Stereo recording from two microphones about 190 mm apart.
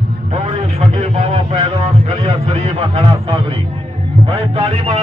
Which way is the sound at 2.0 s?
30° right (ahead or behind).